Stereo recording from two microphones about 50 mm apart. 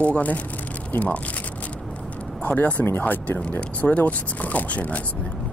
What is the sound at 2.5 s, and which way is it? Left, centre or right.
Speech, left.